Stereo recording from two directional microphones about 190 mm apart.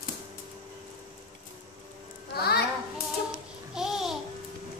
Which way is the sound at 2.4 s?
55° left (ahead or behind).